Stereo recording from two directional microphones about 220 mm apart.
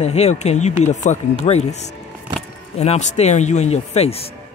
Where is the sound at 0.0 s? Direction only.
30° left (ahead or behind).